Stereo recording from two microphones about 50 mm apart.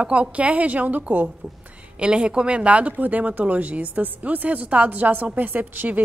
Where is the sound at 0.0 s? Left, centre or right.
Right.